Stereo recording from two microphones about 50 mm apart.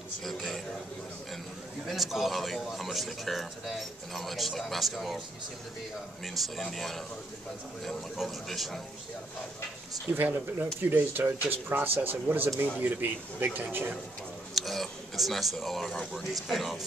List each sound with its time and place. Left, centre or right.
0.2 s a man's voice: centre
1.9 s a man's voice: centre
6.2 s a man's voice: centre
8.5 s a man's voice: centre
10.1 s speech: right
14.5 s a man's voice: centre